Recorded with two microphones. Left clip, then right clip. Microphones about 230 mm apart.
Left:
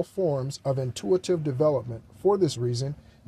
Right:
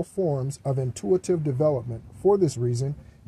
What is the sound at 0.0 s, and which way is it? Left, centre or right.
Speech, left.